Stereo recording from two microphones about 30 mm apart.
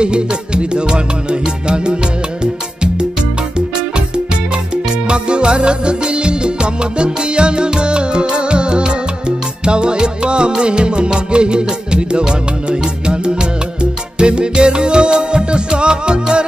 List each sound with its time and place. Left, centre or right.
0.0 s music: right
5.0 s music: right